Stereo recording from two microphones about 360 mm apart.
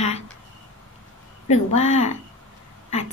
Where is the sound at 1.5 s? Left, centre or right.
Centre.